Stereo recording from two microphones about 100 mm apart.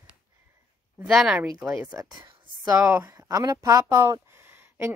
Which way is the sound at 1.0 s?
5° right (ahead or behind).